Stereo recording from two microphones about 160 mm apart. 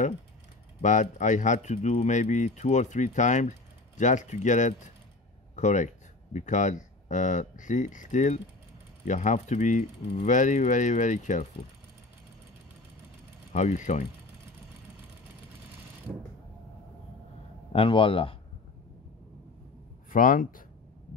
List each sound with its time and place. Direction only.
0.7 s speech: 50° left (ahead or behind)
13.5 s speech: 45° left (ahead or behind)
17.7 s speech: 35° left (ahead or behind)
20.1 s speech: 60° left (ahead or behind)